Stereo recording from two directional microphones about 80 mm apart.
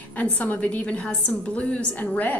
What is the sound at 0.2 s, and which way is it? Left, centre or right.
A woman's voice, centre.